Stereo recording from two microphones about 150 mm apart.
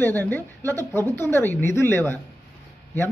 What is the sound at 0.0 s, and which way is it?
A man's voice, 15° left (ahead or behind).